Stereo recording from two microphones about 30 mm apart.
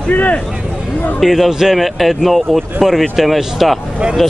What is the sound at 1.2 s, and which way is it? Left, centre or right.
Speech, centre.